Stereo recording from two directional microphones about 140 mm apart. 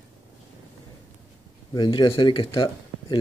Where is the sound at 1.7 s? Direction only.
30° left (ahead or behind).